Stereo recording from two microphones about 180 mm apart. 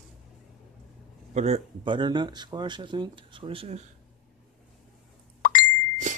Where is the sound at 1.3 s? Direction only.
35° right (ahead or behind).